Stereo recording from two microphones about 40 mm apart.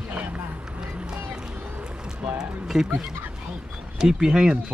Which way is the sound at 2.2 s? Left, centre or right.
Centre.